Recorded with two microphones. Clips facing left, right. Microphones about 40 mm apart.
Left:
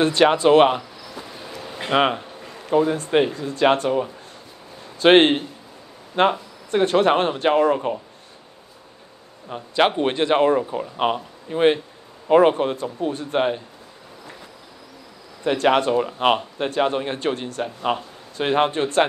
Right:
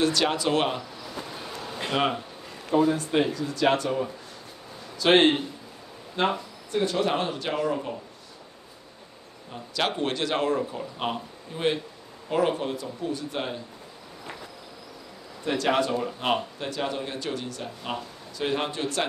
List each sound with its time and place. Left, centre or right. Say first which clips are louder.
0.0 s speech: left 8 dB; left
1.2 s a sound: left 1 dB; centre
1.9 s a man's voice: left 7 dB; left
9.5 s a man's voice: left 9 dB; left
15.4 s speech: left 6 dB; left